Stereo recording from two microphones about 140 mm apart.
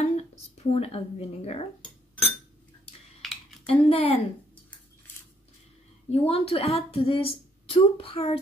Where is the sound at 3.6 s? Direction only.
40° left (ahead or behind).